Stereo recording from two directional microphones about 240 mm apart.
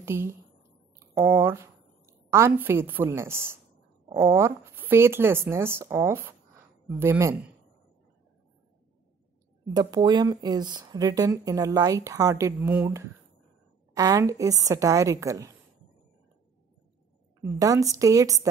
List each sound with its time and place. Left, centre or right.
0.0 s a sound: centre
4.1 s speech: centre
9.8 s speech: centre
17.4 s speech: centre